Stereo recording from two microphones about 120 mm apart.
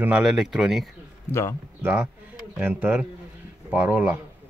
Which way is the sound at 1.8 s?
10° right (ahead or behind).